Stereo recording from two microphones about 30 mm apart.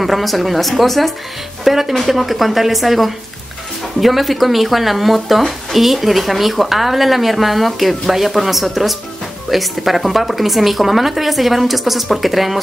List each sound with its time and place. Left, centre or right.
0.0 s a woman's voice: centre
1.6 s a woman's voice: centre